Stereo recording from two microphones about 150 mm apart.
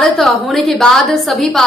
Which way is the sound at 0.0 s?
Centre (ahead or behind).